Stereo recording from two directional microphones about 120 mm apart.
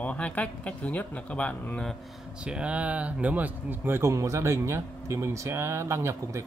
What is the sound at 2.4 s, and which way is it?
Speech, 10° right (ahead or behind).